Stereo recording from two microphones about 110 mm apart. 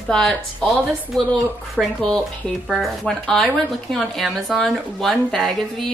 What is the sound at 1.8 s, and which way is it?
Speech, 5° left (ahead or behind).